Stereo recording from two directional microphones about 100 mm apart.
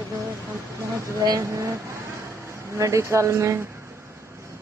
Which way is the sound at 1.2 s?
35° right (ahead or behind).